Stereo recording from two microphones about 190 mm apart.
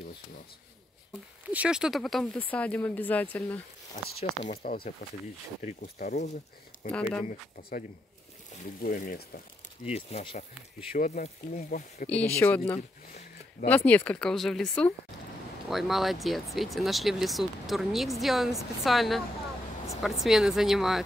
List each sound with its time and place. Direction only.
1.5 s speech: 5° right (ahead or behind)
4.5 s speech: 45° left (ahead or behind)
6.9 s speech: 5° left (ahead or behind)
8.8 s speech: 45° left (ahead or behind)
9.8 s speech: 35° left (ahead or behind)
12.1 s speech: 10° left (ahead or behind)
12.7 s speech: 40° left (ahead or behind)
13.7 s speech: 10° left (ahead or behind)